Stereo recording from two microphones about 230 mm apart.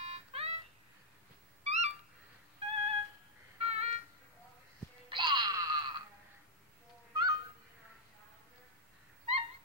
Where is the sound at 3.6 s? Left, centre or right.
Right.